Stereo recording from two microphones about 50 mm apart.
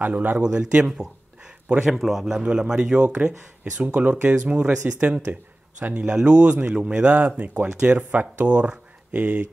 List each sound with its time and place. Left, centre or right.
0.0 s speech: right
0.4 s speech: centre
3.1 s speech: right
4.6 s speech: centre